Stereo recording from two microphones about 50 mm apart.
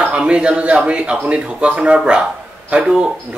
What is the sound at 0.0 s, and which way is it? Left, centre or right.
A man's voice, right.